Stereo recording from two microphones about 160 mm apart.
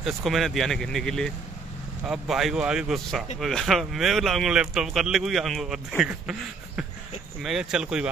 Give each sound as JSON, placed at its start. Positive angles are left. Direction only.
{"t": 0.0, "sound": "speech", "side_deg": 0}
{"t": 7.4, "sound": "speech", "side_deg": -5}